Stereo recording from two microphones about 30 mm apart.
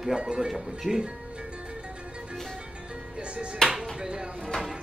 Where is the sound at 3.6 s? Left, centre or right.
Left.